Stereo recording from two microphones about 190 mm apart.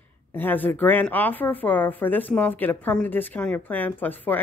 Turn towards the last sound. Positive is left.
turn(degrees=10)  # may be behind; listen again after turning